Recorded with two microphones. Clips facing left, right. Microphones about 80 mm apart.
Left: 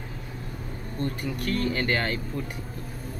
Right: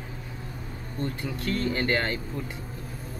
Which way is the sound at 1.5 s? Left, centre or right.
Right.